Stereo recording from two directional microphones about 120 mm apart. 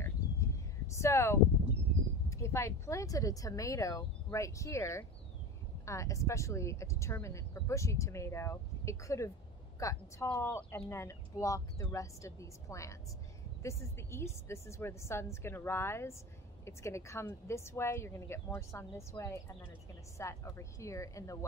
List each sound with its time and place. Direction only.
0.8 s speech: 25° left (ahead or behind)